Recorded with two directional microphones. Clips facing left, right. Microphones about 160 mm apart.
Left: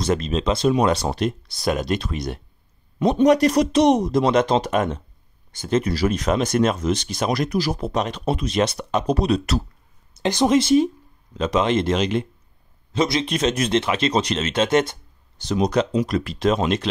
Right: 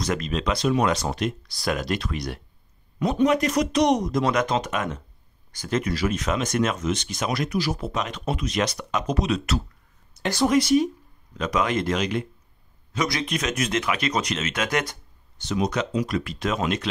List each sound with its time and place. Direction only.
0.0 s speech: 25° left (ahead or behind)
10.1 s speech: 20° left (ahead or behind)